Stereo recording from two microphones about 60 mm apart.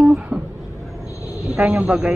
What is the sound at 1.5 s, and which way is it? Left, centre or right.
Speech, centre.